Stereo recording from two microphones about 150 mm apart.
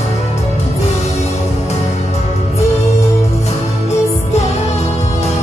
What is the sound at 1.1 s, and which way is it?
Music, 45° left (ahead or behind).